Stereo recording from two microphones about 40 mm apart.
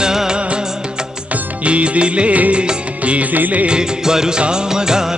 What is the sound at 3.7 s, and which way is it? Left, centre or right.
Music, centre.